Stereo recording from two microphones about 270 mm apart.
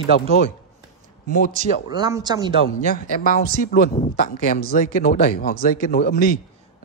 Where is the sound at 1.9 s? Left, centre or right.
Centre.